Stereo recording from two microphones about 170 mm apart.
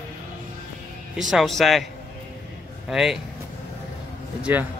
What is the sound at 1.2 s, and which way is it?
Speech, centre (ahead or behind).